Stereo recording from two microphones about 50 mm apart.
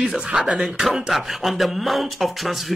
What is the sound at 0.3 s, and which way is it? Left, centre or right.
Speech, centre.